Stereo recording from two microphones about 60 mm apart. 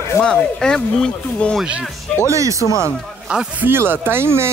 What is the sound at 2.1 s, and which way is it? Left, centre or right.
Speech, right.